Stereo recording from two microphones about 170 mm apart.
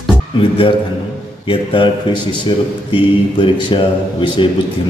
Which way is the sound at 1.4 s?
30° left (ahead or behind).